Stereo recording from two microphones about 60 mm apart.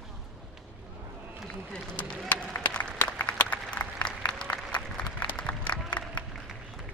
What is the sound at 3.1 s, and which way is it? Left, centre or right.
Applause, left.